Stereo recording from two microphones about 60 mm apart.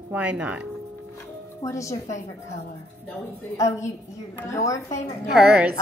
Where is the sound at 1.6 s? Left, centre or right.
Left.